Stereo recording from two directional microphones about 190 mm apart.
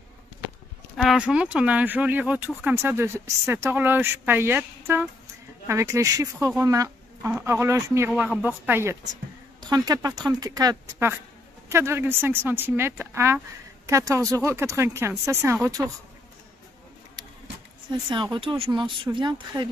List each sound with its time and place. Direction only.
0.9 s speech: centre (ahead or behind)
8.1 s speech: centre (ahead or behind); by 15.9 s 20° right (ahead or behind)
18.1 s speech: 25° right (ahead or behind)